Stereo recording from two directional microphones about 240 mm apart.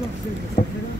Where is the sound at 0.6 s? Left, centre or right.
Left.